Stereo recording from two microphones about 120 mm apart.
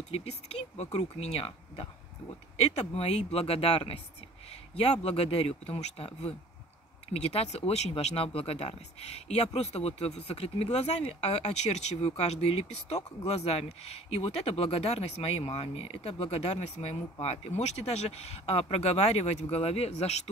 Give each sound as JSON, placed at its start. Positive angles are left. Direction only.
{"t": 0.1, "sound": "speech", "side_deg": 60}
{"t": 5.0, "sound": "speech", "side_deg": 55}